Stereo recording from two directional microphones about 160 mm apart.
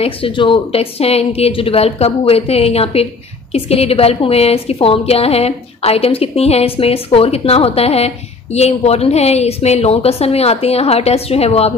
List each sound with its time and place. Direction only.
0.0 s a woman's voice: 35° left (ahead or behind)